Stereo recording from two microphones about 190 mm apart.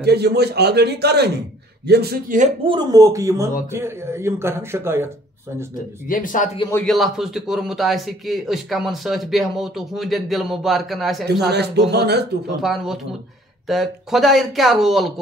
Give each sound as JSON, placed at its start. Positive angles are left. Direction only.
{"t": 0.0, "sound": "a man's voice", "side_deg": -60}
{"t": 2.6, "sound": "speech", "side_deg": -20}
{"t": 6.0, "sound": "speech", "side_deg": 45}
{"t": 6.9, "sound": "speech", "side_deg": 0}
{"t": 11.5, "sound": "a man's voice", "side_deg": -60}
{"t": 12.6, "sound": "speech", "side_deg": 0}